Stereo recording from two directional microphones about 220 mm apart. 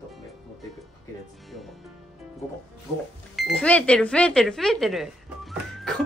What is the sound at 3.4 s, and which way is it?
Speech, 5° left (ahead or behind).